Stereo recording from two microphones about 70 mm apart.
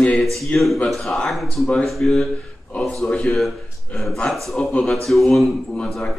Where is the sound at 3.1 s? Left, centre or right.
Centre.